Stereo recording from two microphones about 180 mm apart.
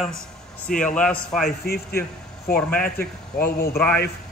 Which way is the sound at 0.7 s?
5° left (ahead or behind).